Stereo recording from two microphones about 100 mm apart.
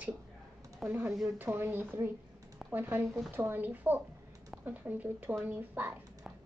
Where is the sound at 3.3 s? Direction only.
20° right (ahead or behind).